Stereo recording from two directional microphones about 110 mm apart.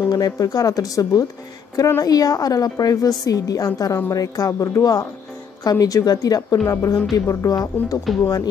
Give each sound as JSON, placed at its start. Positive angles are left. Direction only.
{"t": 0.1, "sound": "a woman's voice", "side_deg": 35}